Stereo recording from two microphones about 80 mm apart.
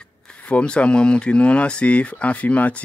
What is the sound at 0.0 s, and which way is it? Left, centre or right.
Speech, centre.